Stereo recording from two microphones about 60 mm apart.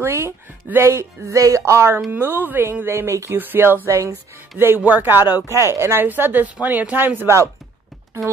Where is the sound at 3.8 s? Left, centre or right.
Right.